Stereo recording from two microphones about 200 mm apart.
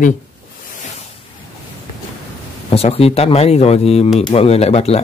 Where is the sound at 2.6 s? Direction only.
30° left (ahead or behind).